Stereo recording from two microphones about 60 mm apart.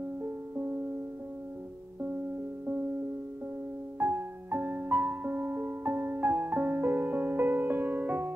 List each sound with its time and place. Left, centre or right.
4.0 s music: right